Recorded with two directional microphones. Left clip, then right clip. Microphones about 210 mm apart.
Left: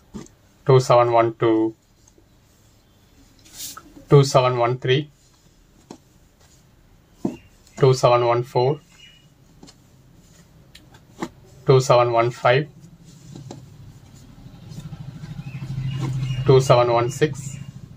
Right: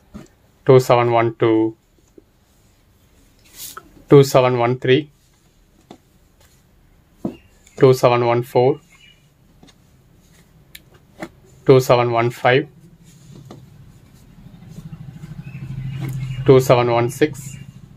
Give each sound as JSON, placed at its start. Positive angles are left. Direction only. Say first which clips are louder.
{"t": 0.7, "sound": "speech", "louder": "right 2 dB", "side_deg": -50}
{"t": 4.1, "sound": "speech", "louder": "right 4 dB", "side_deg": -50}
{"t": 7.7, "sound": "speech", "louder": "right 3 dB", "side_deg": -50}
{"t": 11.6, "sound": "speech", "louder": "right 3 dB", "side_deg": -50}
{"t": 16.4, "sound": "speech", "louder": "right 3 dB", "side_deg": -50}